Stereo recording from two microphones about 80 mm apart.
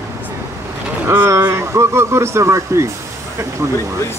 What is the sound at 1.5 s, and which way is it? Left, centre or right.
Speech, right.